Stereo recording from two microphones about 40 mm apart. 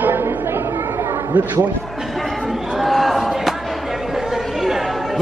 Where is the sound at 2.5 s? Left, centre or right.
Centre.